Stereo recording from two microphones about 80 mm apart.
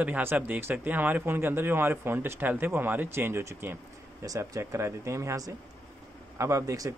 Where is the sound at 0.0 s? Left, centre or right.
Right.